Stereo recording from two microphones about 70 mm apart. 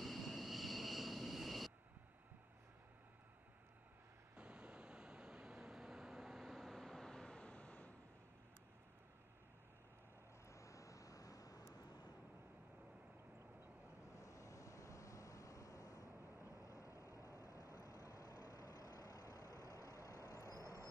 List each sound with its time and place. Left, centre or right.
0.0 s vehicle: centre
4.4 s vehicle: centre
10.5 s vehicle: left
14.1 s vehicle: left